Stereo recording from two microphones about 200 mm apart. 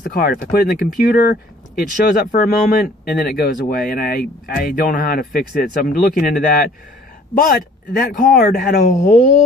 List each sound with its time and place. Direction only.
0.0 s speech: 45° left (ahead or behind)